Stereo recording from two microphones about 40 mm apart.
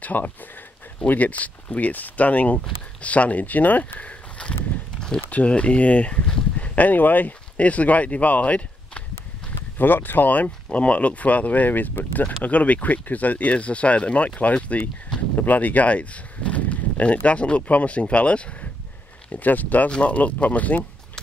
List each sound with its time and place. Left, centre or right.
0.0 s speech: left
5.3 s speech: left
9.8 s speech: left
15.3 s speech: left
19.3 s speech: left
19.9 s speech: left